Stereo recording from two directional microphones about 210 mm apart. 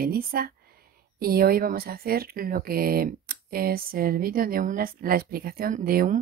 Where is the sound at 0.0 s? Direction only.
45° right (ahead or behind).